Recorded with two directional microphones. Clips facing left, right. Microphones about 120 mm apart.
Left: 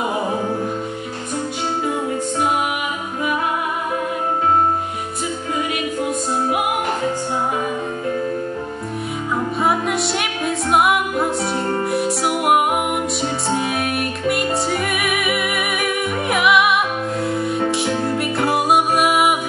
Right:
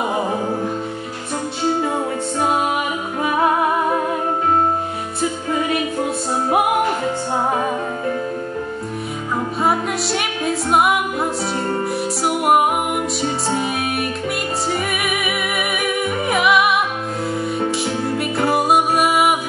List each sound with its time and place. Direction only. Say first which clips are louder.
2.7 s music: right 3 dB; 35° right (ahead or behind)
9.6 s music: even; centre (ahead or behind)
13.6 s music: even; centre (ahead or behind)